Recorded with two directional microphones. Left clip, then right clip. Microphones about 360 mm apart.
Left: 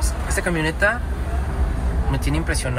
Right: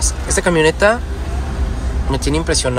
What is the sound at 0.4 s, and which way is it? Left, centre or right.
Speech, right.